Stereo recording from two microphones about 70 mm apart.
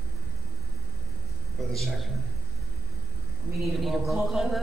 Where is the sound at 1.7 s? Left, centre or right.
Centre.